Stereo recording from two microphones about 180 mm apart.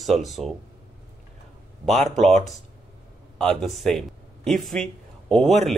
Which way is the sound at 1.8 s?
Centre (ahead or behind).